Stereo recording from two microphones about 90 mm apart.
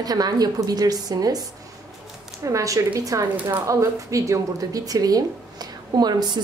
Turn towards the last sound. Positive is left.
turn(degrees=-50)  # may be behind; listen again after turning